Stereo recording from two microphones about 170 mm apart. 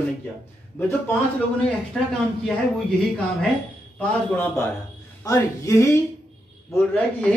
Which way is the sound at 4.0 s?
10° left (ahead or behind).